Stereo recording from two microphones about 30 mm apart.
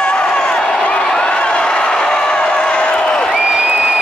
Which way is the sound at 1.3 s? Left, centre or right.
Left.